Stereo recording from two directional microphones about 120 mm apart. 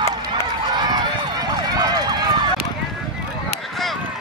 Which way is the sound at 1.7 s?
35° right (ahead or behind).